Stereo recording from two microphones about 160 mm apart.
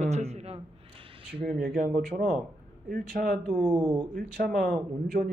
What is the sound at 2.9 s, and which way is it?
Speech, 65° right (ahead or behind).